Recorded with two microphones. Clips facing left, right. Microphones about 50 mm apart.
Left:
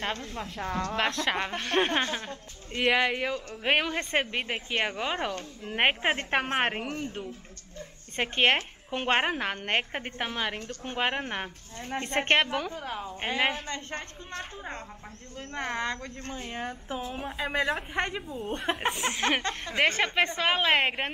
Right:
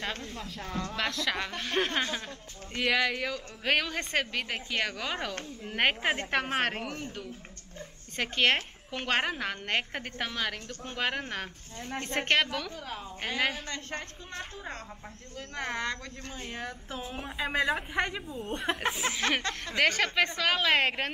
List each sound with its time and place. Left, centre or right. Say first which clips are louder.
0.0 s a woman's voice: left 3 dB; left
2.0 s a woman's voice: left 2 dB; centre
8.2 s a woman's voice: left 2 dB; left
12.0 s a woman's voice: left 2 dB; left
15.8 s a woman's voice: left 2 dB; left
17.0 s a woman's voice: even; centre; by 20.9 s left